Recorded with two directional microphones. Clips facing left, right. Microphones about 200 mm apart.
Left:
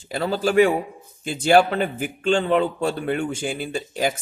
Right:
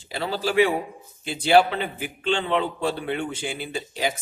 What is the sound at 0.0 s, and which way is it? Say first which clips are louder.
A man's voice: left 4 dB; 45° left (ahead or behind).